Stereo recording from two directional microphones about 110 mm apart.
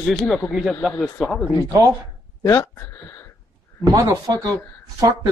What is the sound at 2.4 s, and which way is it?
Speech, 25° left (ahead or behind).